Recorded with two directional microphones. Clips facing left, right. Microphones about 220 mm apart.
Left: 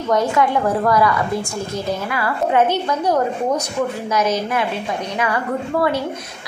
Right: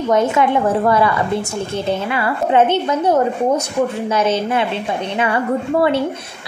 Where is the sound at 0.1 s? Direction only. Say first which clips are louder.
Right 2 dB; 20° right (ahead or behind).